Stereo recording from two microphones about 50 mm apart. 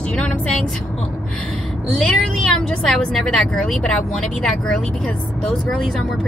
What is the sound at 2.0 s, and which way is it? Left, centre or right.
Speech, centre.